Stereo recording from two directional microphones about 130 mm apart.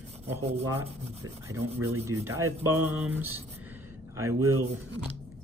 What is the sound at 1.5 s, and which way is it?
Rub, 20° right (ahead or behind).